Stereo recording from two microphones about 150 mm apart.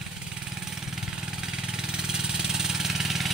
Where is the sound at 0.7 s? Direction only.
5° right (ahead or behind).